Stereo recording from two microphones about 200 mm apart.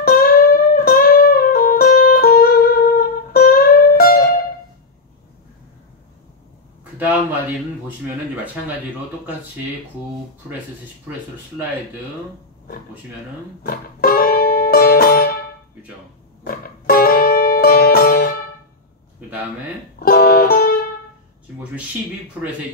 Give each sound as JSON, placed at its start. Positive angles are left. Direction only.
{"t": 0.0, "sound": "music", "side_deg": 45}
{"t": 6.8, "sound": "a sound", "side_deg": -5}
{"t": 11.1, "sound": "speech", "side_deg": -10}
{"t": 13.7, "sound": "music", "side_deg": 50}
{"t": 16.4, "sound": "music", "side_deg": 45}
{"t": 19.2, "sound": "a sound", "side_deg": -10}
{"t": 20.0, "sound": "music", "side_deg": 50}